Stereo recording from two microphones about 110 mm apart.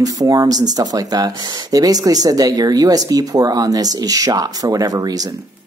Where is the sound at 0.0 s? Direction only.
35° right (ahead or behind).